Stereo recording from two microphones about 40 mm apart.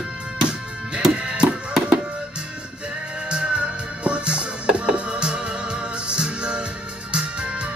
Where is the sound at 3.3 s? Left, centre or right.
Right.